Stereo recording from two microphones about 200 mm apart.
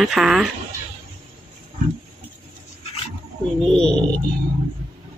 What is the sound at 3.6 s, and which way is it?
Speech, 5° left (ahead or behind).